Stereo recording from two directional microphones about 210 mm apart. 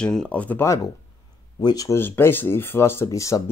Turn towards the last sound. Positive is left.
turn(degrees=15)  # may be behind; listen again after turning